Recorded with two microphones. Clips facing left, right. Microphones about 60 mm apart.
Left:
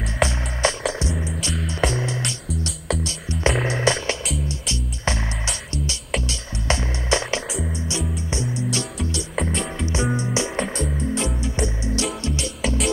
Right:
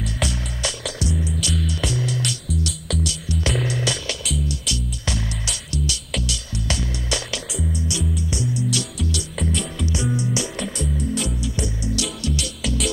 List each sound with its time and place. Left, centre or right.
0.2 s music: left